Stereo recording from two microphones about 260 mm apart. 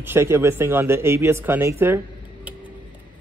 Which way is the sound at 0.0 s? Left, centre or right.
Centre.